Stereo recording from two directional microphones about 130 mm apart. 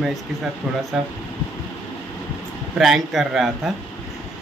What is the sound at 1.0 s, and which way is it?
Speech, centre (ahead or behind).